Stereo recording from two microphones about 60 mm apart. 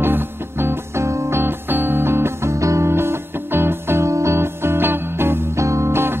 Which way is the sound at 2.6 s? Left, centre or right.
Right.